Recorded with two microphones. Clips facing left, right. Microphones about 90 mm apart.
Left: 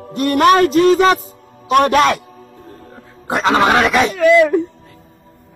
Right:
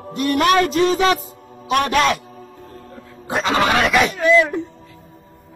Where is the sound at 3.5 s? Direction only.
35° left (ahead or behind).